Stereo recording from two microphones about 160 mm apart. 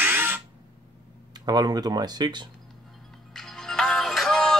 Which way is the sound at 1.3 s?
25° right (ahead or behind).